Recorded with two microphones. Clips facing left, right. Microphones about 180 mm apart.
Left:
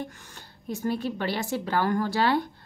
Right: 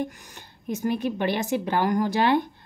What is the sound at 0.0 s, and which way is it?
Speech, 20° right (ahead or behind).